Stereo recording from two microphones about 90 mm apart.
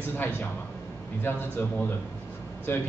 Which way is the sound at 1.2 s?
20° left (ahead or behind).